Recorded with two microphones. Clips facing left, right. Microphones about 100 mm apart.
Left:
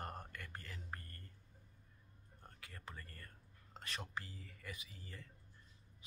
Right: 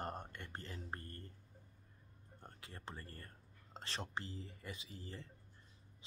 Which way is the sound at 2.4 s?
30° right (ahead or behind).